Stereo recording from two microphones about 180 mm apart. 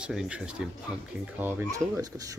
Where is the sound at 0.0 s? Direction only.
5° right (ahead or behind).